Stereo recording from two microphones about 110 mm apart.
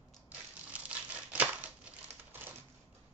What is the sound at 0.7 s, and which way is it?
Crumpling, 15° right (ahead or behind).